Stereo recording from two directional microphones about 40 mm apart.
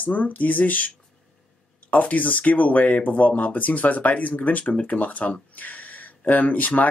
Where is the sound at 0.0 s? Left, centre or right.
Left.